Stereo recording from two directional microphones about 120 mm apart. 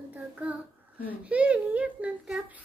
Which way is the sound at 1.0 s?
10° right (ahead or behind).